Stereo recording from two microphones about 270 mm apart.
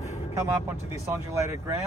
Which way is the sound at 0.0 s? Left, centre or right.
Left.